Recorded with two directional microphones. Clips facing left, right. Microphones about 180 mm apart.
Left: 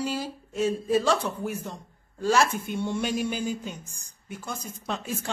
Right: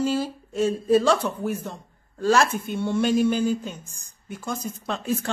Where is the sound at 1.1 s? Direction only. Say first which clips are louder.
Right 3 dB; 10° right (ahead or behind).